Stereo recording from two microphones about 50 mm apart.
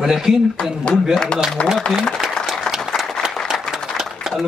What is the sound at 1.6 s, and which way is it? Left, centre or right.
Speech, left.